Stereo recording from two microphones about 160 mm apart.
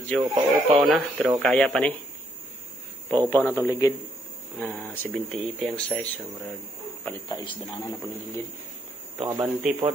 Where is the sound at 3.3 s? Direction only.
10° left (ahead or behind).